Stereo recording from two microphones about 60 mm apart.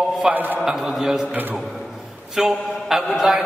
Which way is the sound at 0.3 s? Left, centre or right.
Right.